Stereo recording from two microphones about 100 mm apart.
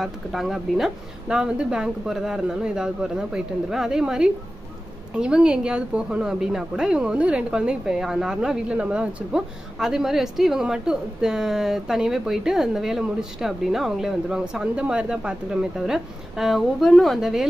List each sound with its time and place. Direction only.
0.0 s a woman's voice: centre (ahead or behind)